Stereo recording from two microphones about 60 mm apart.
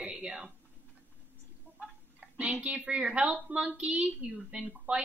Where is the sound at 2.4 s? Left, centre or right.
Right.